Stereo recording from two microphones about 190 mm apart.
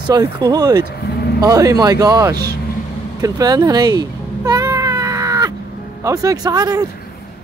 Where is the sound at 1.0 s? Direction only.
60° left (ahead or behind).